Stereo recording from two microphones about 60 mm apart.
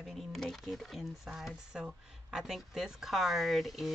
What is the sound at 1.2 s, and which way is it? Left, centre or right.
Speech, centre.